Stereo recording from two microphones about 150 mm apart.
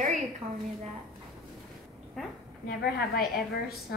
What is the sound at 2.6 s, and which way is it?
A woman's voice, 90° left.